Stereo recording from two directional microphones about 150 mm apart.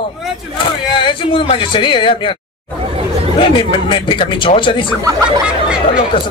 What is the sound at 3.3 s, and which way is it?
Speech, 35° left (ahead or behind).